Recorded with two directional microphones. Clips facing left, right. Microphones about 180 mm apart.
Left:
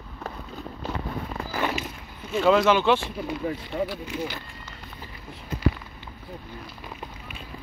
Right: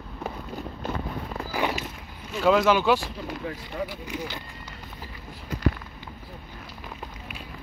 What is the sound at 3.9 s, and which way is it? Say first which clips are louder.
Speech: left 3 dB; 15° right (ahead or behind).